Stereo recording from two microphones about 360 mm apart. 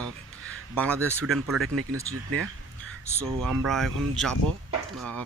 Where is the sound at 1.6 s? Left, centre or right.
Right.